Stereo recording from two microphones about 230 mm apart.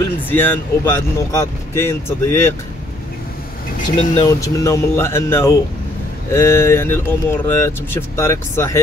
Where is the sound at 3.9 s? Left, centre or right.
Left.